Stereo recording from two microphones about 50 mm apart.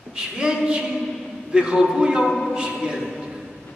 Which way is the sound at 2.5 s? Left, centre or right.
Centre.